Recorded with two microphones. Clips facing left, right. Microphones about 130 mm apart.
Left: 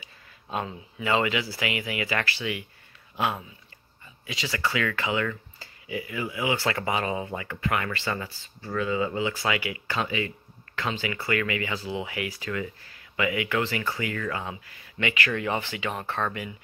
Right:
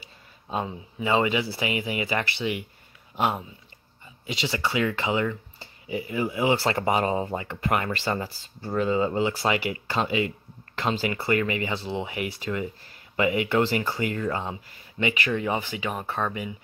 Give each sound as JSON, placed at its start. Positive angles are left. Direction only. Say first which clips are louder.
{"t": 0.5, "sound": "speech", "louder": "right 2 dB", "side_deg": -25}
{"t": 5.9, "sound": "speech", "louder": "right 4 dB", "side_deg": -30}
{"t": 13.1, "sound": "speech", "louder": "right 4 dB", "side_deg": -35}